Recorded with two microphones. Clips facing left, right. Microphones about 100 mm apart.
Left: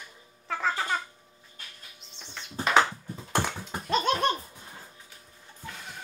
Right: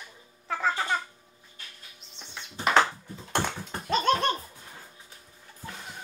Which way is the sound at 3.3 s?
Centre (ahead or behind).